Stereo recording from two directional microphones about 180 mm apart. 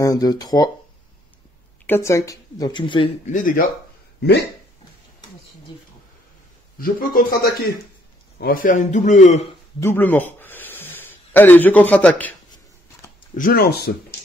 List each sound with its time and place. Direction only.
0.0 s speech: 20° left (ahead or behind)
1.9 s speech: 15° left (ahead or behind)
3.3 s a man's voice: 45° left (ahead or behind)
6.8 s a man's voice: 50° left (ahead or behind)
9.8 s a sound: 10° left (ahead or behind)
13.4 s speech: 55° left (ahead or behind)